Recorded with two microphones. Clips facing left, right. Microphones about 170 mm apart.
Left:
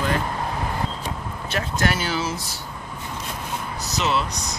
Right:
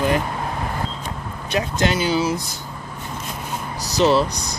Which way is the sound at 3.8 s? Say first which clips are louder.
Right 8 dB; 35° right (ahead or behind).